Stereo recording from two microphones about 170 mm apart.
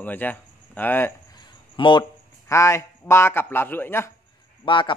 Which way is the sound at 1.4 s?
30° left (ahead or behind).